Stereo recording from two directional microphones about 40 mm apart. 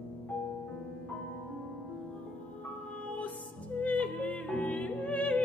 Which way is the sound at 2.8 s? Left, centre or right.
Left.